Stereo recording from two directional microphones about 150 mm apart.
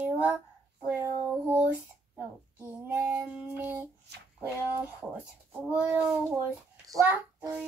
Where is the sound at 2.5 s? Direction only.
15° right (ahead or behind).